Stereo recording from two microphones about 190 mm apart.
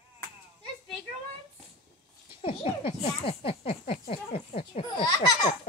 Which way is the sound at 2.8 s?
30° left (ahead or behind).